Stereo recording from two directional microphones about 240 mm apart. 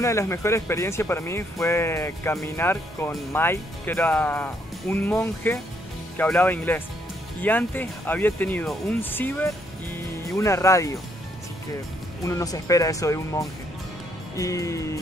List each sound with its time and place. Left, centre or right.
0.0 s speech: centre
12.3 s speech: centre